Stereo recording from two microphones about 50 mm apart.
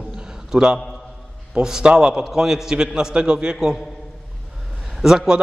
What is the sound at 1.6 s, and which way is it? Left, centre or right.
A man's voice, centre.